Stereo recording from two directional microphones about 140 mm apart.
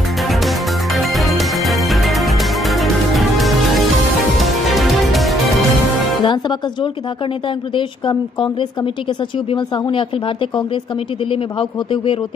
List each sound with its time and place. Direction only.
0.3 s music: centre (ahead or behind)
6.2 s a woman's voice: 35° left (ahead or behind)